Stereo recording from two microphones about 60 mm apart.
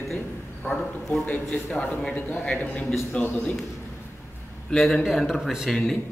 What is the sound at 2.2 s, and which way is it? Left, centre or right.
A man's voice, left.